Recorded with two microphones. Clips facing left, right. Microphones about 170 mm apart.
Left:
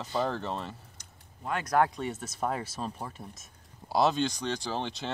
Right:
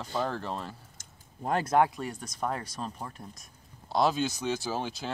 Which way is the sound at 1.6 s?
20° right (ahead or behind).